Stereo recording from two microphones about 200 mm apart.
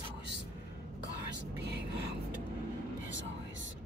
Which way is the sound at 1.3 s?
60° right (ahead or behind).